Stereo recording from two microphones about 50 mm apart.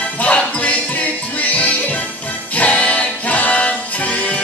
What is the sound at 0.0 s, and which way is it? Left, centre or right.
Music, left.